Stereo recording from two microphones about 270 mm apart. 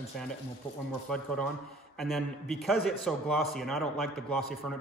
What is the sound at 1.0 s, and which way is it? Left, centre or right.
Speech, centre.